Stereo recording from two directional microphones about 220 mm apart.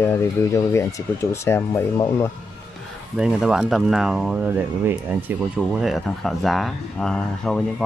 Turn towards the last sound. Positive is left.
turn(degrees=5)  # may be behind; listen again after turning